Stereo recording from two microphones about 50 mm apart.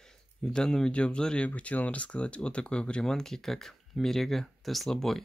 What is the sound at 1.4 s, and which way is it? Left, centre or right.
Speech, left.